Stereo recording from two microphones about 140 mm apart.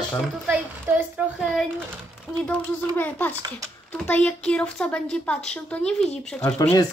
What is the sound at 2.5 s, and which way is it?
Speech, 15° left (ahead or behind).